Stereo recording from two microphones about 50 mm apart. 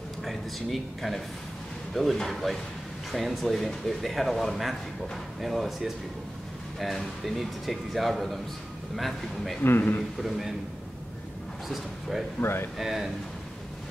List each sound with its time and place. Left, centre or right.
0.2 s speech: centre
9.6 s a man's voice: left
10.2 s speech: centre
11.7 s speech: centre
12.4 s speech: left
12.7 s speech: centre